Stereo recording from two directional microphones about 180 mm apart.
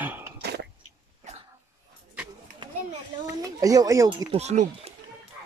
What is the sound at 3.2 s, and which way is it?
A child's voice, 20° right (ahead or behind).